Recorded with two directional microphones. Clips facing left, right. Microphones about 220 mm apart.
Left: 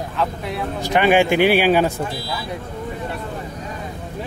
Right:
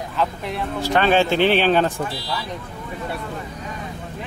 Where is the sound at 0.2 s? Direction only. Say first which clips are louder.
Even; centre (ahead or behind).